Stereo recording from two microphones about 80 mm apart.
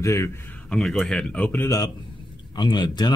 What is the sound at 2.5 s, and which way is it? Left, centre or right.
Speech, left.